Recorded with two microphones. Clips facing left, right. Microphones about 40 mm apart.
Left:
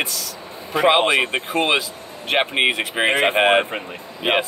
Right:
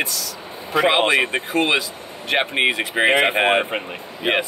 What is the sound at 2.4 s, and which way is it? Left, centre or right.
Speech, left.